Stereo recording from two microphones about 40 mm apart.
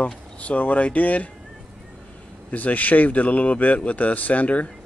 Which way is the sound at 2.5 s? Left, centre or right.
Left.